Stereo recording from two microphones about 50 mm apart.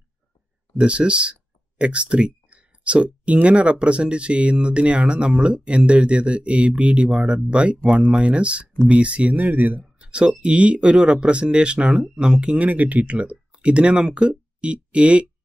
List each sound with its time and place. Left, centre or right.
0.7 s speech: right
7.7 s speech: centre
8.0 s speech: right
10.0 s speech: right
12.6 s speech: right